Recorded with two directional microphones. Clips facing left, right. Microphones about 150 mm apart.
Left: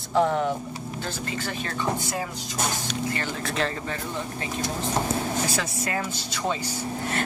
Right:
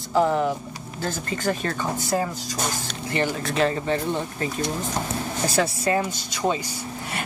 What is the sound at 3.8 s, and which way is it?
Speech, 30° right (ahead or behind).